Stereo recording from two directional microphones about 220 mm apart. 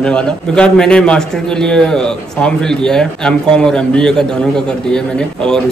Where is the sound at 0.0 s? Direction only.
5° left (ahead or behind).